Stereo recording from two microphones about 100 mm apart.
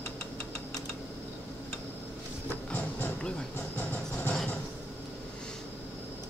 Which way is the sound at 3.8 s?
15° left (ahead or behind).